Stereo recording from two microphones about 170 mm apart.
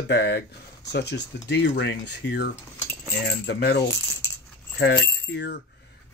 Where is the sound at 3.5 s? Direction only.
70° left (ahead or behind).